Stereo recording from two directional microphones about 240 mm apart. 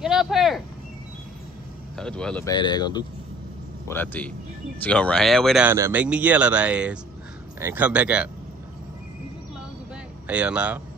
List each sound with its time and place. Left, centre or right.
0.0 s speech: centre
2.0 s speech: centre
2.5 s speech: centre
10.2 s speech: centre